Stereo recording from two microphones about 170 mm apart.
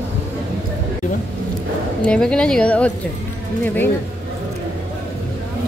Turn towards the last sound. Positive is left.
turn(degrees=10)  # may be behind; listen again after turning